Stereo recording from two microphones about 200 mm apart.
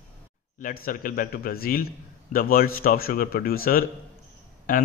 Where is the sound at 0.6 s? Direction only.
45° left (ahead or behind).